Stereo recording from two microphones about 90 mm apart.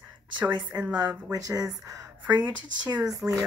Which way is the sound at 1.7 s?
40° right (ahead or behind).